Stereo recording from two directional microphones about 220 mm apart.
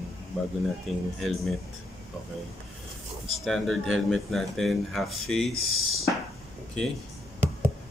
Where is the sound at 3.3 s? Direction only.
Centre (ahead or behind).